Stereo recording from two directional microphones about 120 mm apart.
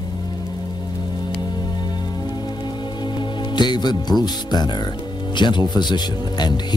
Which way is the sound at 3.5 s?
40° left (ahead or behind).